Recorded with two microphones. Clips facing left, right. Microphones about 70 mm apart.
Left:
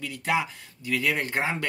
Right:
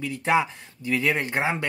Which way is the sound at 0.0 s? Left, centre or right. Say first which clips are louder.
Right 4 dB; right.